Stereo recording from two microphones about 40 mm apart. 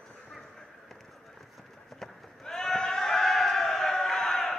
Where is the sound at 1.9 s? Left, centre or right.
Centre.